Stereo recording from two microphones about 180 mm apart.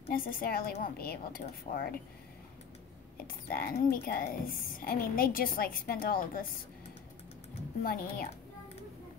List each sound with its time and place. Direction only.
0.1 s a woman's voice: 55° left (ahead or behind)
3.4 s a woman's voice: 55° left (ahead or behind)
7.8 s speech: 55° left (ahead or behind)